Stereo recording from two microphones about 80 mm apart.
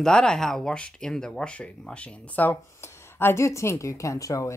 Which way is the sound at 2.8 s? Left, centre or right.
Left.